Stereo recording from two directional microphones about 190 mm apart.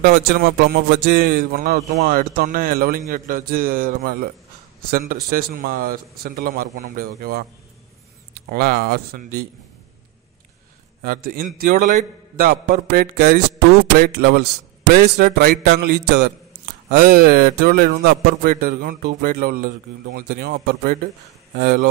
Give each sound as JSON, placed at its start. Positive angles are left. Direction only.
{"t": 0.0, "sound": "speech", "side_deg": -55}
{"t": 8.5, "sound": "speech", "side_deg": -55}
{"t": 11.0, "sound": "speech", "side_deg": -55}
{"t": 13.9, "sound": "speech", "side_deg": -55}